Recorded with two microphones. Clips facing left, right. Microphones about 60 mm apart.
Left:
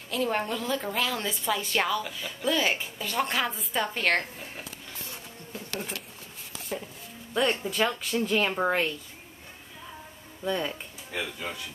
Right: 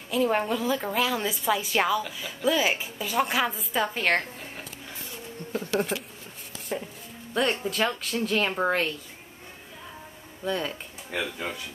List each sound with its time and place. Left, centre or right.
0.1 s a woman's voice: centre
5.5 s speech: right
6.7 s a woman's voice: centre
7.3 s speech: centre
10.4 s speech: centre